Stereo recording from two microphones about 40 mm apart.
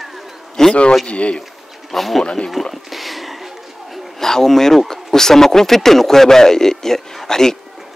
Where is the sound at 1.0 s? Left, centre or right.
Left.